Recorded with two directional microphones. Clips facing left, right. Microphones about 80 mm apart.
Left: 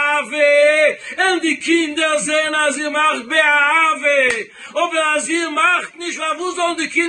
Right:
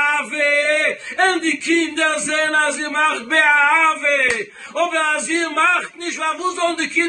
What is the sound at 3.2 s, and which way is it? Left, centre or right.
Speech, centre.